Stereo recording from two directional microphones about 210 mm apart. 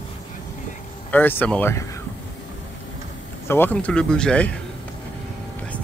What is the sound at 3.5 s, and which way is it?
Speech, 10° left (ahead or behind).